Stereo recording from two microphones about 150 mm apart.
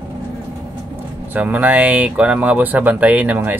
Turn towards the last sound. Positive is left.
turn(degrees=-10)  # may be behind; listen again after turning